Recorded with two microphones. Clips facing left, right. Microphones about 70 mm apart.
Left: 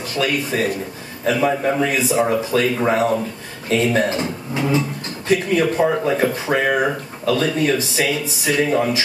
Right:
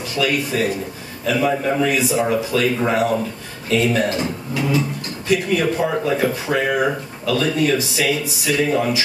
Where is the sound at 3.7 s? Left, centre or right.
Left.